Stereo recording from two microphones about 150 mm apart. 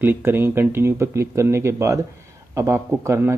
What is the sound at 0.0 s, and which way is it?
A man's voice, 15° right (ahead or behind).